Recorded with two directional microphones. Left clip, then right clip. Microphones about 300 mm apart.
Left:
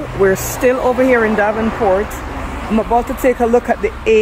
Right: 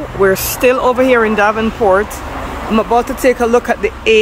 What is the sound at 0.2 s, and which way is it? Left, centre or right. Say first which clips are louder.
Speech: right 2 dB; centre.